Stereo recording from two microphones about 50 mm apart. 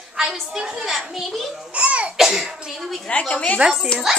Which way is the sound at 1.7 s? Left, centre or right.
Right.